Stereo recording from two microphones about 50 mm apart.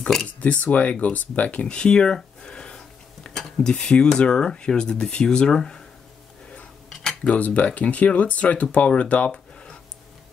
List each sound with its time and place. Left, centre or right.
0.4 s speech: left
2.4 s a sound: centre
3.3 s speech: centre
6.9 s cutlery: centre
7.2 s speech: left